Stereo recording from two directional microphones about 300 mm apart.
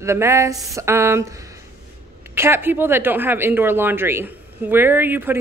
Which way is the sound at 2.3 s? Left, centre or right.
Centre.